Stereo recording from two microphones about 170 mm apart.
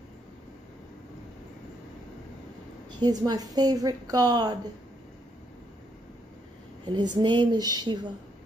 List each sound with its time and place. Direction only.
3.0 s a woman's voice: 25° right (ahead or behind)
6.9 s a woman's voice: 25° right (ahead or behind)